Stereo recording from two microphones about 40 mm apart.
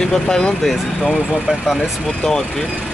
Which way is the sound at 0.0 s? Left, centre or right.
Centre.